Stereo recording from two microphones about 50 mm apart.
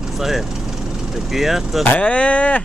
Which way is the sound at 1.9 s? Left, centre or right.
Left.